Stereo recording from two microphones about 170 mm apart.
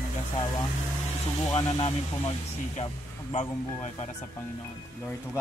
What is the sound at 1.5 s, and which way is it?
Speech, 35° left (ahead or behind).